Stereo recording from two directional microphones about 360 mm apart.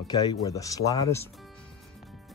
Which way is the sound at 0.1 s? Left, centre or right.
Centre.